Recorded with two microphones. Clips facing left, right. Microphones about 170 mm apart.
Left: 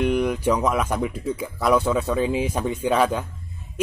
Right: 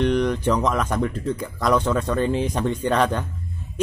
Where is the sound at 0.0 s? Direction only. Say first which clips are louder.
Right 1 dB; 5° left (ahead or behind).